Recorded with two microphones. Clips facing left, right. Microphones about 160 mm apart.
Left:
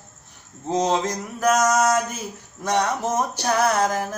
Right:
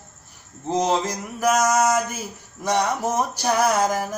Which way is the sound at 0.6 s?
5° right (ahead or behind).